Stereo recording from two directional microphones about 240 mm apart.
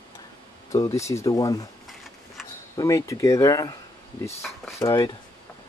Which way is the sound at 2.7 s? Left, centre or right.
Centre.